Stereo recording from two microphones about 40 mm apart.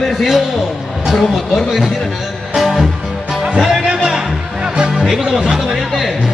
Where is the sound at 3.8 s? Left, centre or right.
Centre.